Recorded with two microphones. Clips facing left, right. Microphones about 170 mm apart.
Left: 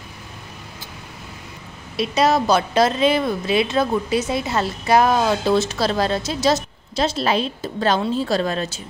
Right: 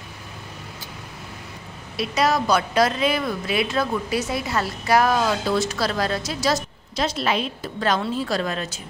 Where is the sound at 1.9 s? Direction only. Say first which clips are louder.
Left 3 dB; 25° left (ahead or behind).